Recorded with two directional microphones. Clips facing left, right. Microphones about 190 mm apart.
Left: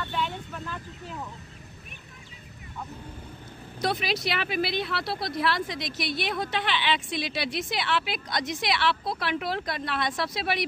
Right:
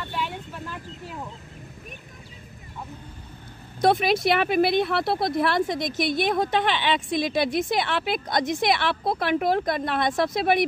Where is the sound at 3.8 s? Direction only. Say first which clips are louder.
Right 8 dB; 50° right (ahead or behind).